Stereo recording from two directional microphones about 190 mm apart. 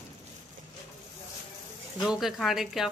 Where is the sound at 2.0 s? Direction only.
Centre (ahead or behind).